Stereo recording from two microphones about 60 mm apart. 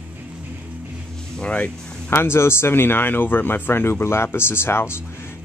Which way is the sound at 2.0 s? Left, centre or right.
Left.